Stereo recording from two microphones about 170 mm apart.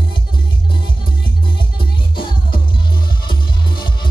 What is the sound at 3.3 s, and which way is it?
Music, 30° left (ahead or behind).